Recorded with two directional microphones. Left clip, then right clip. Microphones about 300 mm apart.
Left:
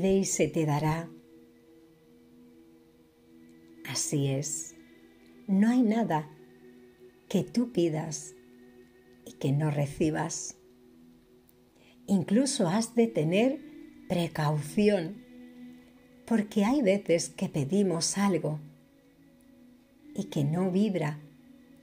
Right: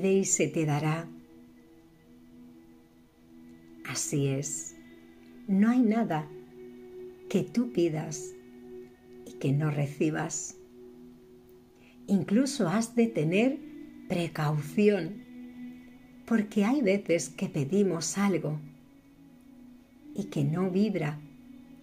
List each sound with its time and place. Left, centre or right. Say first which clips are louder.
0.0 s a woman's voice: even; centre
3.8 s a woman's voice: even; centre
7.2 s a woman's voice: even; centre
12.1 s a woman's voice: left 1 dB; centre
16.3 s a woman's voice: even; centre
20.1 s a woman's voice: even; centre